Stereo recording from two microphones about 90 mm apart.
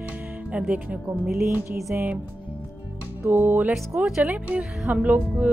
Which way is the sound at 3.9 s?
15° right (ahead or behind).